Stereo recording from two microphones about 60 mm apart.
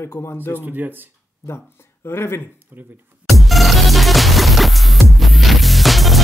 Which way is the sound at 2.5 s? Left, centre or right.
Right.